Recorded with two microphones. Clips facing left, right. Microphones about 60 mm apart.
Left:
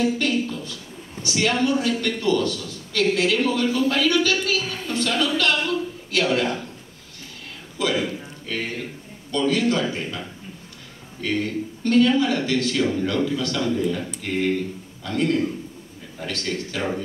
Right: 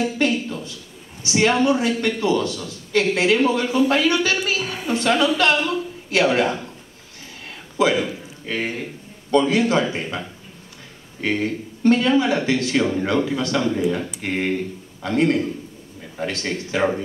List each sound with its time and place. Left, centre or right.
0.0 s a sound: right
1.2 s a man's voice: right
8.5 s a man's voice: right